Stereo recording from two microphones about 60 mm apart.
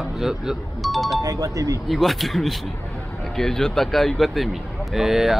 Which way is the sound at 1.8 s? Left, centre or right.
Centre.